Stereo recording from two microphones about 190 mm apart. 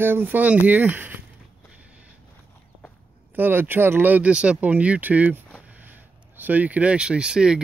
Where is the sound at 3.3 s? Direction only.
10° right (ahead or behind).